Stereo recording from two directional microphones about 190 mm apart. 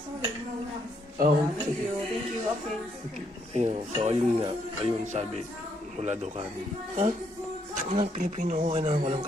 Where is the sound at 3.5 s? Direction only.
35° right (ahead or behind).